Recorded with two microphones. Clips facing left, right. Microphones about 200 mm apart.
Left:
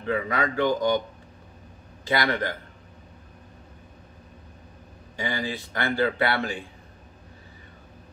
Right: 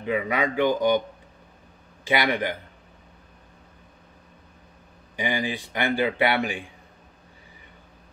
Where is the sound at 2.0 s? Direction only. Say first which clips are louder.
Right 1 dB; 15° right (ahead or behind).